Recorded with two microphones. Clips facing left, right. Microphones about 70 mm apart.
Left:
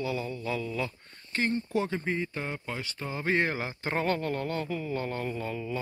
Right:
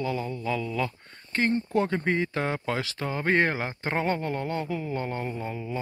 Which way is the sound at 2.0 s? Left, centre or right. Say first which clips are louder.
Right 6 dB; right.